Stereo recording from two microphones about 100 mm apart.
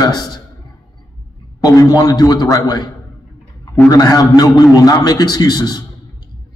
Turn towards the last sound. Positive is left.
turn(degrees=40)  # may be behind; listen again after turning